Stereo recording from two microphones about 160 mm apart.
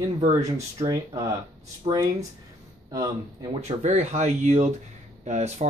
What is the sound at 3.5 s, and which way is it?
Speech, 45° right (ahead or behind).